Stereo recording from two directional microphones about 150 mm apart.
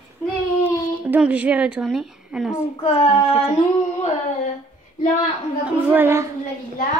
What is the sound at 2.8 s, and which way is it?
Child singing, 40° left (ahead or behind).